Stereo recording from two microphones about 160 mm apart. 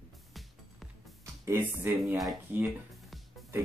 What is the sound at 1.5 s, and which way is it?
Speech, 15° right (ahead or behind).